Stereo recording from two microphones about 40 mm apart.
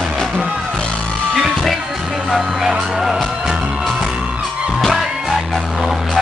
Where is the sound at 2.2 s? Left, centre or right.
Centre.